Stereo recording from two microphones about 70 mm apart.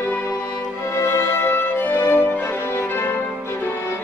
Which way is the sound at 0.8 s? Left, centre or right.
Left.